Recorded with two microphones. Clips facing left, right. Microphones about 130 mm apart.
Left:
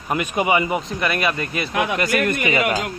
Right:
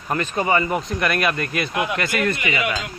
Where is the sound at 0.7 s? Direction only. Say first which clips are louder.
Right 1 dB; centre (ahead or behind).